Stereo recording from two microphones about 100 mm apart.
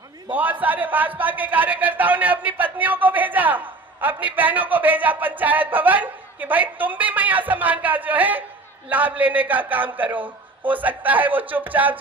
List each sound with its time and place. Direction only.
0.3 s a man's voice: 15° right (ahead or behind)